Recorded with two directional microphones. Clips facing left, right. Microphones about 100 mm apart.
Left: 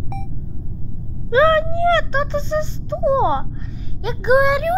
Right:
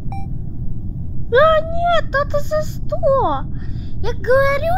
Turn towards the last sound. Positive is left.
turn(degrees=0)  # may be behind; listen again after turning